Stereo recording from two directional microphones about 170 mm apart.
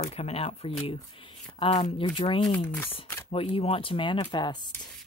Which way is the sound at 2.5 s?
10° left (ahead or behind).